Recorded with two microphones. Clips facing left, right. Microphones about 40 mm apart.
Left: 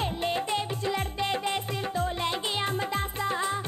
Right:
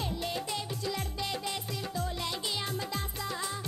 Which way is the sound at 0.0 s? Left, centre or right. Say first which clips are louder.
Left 6 dB; left.